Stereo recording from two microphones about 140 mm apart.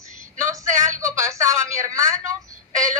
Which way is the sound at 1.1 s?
20° right (ahead or behind).